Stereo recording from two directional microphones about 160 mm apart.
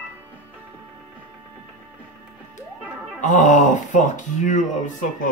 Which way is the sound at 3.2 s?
50° left (ahead or behind).